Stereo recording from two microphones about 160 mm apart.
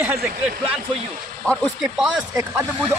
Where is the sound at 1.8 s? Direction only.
5° right (ahead or behind).